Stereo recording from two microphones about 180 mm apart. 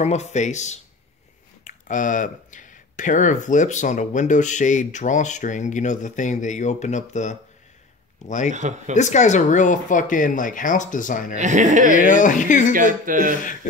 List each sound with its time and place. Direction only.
0.0 s speech: 40° left (ahead or behind)
8.5 s speech: 40° right (ahead or behind)
8.9 s speech: 40° left (ahead or behind)
11.3 s speech: 40° right (ahead or behind)
11.9 s speech: 45° left (ahead or behind)
12.7 s speech: 45° right (ahead or behind)